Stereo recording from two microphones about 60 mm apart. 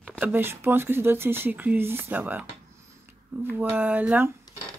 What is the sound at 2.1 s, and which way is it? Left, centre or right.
Speech, right.